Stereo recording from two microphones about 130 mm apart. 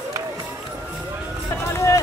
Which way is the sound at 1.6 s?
20° left (ahead or behind).